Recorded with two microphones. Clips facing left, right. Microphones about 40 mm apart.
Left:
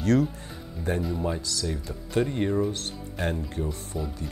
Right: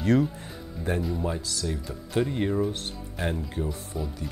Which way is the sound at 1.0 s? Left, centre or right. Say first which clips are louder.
Left 1 dB; centre.